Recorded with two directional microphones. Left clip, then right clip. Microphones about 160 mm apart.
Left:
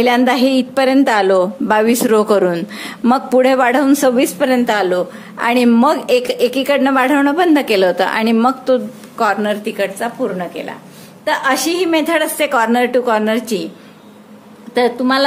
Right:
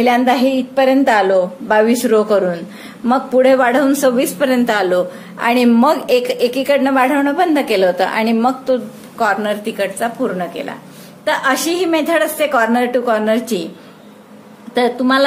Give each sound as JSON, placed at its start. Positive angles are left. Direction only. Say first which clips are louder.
{"t": 0.0, "sound": "a woman's voice", "louder": "even", "side_deg": 45}
{"t": 14.7, "sound": "a woman's voice", "louder": "even", "side_deg": 10}